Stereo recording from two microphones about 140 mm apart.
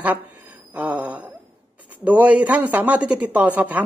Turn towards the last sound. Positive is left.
turn(degrees=-10)  # may be behind; listen again after turning